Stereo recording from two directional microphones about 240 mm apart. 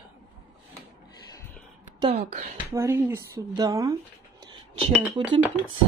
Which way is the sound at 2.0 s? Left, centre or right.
Right.